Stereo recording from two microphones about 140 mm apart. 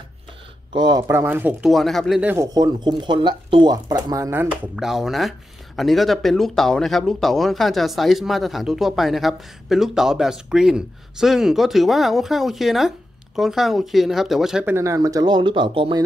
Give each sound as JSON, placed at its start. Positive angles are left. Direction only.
{"t": 0.7, "sound": "speech", "side_deg": -30}
{"t": 1.7, "sound": "speech", "side_deg": 0}
{"t": 2.2, "sound": "speech", "side_deg": -20}
{"t": 4.7, "sound": "speech", "side_deg": -5}
{"t": 14.7, "sound": "speech", "side_deg": -20}